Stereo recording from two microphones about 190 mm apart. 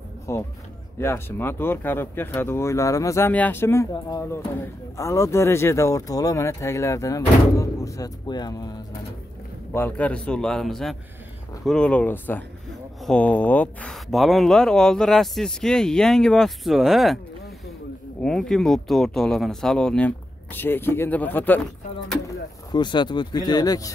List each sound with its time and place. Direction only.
0.3 s speech: 15° left (ahead or behind)
9.7 s speech: 10° left (ahead or behind)
18.2 s speech: 5° left (ahead or behind)
22.2 s speech: 20° left (ahead or behind)